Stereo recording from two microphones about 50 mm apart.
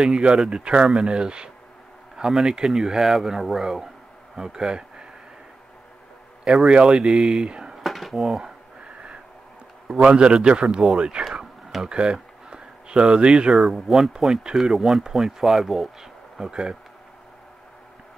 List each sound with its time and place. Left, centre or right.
0.0 s speech: centre
2.1 s speech: centre
6.4 s speech: centre
7.7 s a sound: centre
9.9 s speech: centre
13.7 s speech: centre